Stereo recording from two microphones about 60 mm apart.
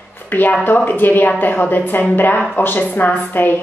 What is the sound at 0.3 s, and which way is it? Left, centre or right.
A woman's voice, left.